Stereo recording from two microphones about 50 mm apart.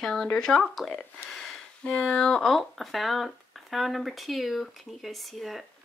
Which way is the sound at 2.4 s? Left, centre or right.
Centre.